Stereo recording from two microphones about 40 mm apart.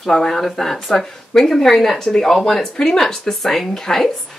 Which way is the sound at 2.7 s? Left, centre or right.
Centre.